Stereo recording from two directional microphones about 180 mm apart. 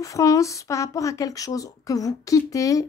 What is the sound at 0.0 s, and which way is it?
Speech, 20° left (ahead or behind).